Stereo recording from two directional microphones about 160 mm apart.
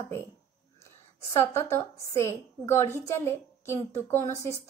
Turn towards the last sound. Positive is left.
turn(degrees=15)  # may be behind; listen again after turning